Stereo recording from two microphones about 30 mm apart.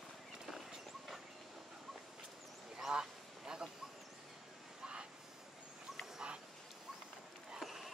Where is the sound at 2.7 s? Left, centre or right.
Right.